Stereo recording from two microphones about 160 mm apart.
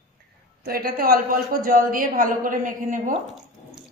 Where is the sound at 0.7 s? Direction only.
70° right (ahead or behind).